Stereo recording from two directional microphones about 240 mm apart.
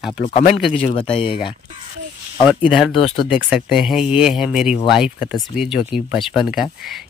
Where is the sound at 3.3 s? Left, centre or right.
Centre.